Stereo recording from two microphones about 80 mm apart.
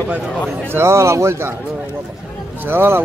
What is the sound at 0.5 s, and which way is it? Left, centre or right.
A man's voice, right.